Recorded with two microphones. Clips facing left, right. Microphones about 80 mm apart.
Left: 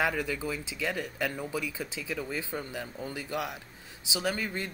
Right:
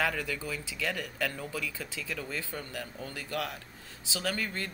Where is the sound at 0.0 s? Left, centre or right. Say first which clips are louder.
Left 2 dB; centre.